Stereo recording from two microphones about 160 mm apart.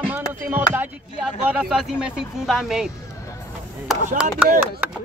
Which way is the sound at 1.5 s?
5° right (ahead or behind).